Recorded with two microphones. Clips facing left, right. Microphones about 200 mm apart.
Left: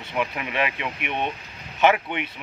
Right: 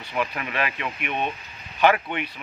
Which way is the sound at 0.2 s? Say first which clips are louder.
Left 1 dB; 20° left (ahead or behind).